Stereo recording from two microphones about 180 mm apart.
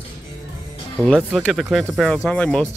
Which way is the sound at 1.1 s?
5° left (ahead or behind).